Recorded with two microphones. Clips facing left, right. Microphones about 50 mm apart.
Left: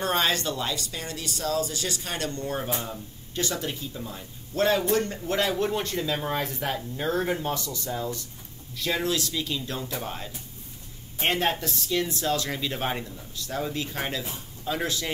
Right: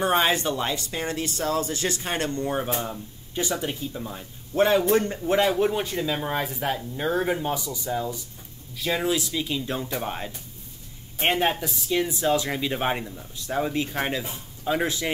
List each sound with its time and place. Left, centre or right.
0.0 s speech: centre
11.1 s speech: centre